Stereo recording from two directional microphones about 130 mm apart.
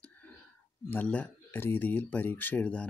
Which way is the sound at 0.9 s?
10° left (ahead or behind).